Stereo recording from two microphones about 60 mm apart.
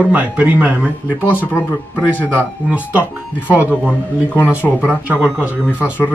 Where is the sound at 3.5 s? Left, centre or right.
Right.